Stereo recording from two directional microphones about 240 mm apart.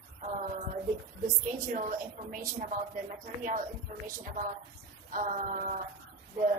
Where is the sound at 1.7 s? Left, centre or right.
Right.